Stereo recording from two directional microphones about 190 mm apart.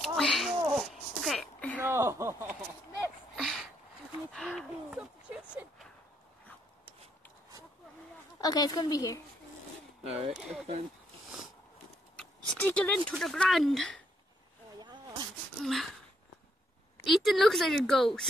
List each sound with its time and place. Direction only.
0.0 s a sound: centre (ahead or behind)
1.8 s a sound: 10° right (ahead or behind)
3.3 s a sound: centre (ahead or behind)
4.3 s gasp: 5° left (ahead or behind)
8.4 s a woman's voice: 20° left (ahead or behind)
10.3 s a woman's voice: centre (ahead or behind)
12.5 s a woman's voice: 10° left (ahead or behind)
14.8 s zipper: 25° right (ahead or behind)
15.6 s speech: centre (ahead or behind)
17.0 s a woman's voice: centre (ahead or behind)